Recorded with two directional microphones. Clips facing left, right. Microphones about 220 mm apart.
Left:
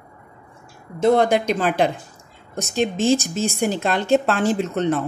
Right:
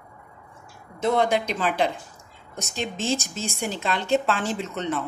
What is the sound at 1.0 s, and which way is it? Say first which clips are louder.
Speech: left 6 dB; 45° left (ahead or behind).